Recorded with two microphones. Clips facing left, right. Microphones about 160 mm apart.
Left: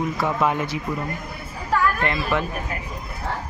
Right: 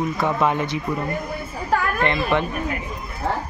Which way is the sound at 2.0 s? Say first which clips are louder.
Right 3 dB; 5° left (ahead or behind).